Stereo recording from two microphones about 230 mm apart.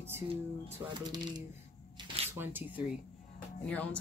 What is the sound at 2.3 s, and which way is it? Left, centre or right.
Speech, centre.